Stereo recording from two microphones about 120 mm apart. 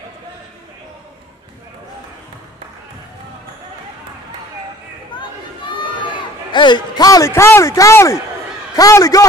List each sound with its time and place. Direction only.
6.5 s a man's voice: 40° left (ahead or behind)